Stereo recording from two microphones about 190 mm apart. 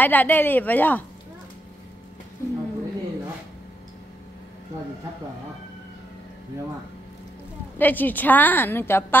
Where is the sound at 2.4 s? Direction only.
15° left (ahead or behind).